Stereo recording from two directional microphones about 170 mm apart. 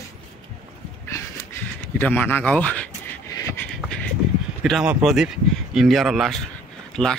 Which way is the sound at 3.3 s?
20° left (ahead or behind).